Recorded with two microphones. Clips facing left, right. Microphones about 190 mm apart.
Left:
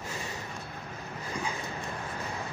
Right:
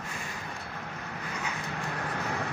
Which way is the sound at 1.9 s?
75° right (ahead or behind).